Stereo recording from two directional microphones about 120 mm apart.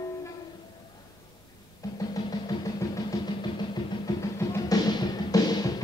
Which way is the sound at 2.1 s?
30° left (ahead or behind).